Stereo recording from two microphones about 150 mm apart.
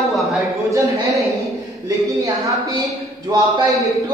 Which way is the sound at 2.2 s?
20° right (ahead or behind).